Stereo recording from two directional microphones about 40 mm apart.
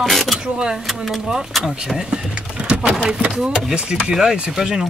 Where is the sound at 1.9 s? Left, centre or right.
Right.